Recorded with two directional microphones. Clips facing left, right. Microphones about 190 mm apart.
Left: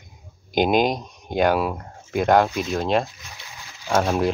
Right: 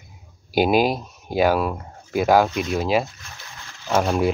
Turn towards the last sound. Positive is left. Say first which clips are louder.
# right 1 dB
turn(degrees=0)  # may be behind; listen again after turning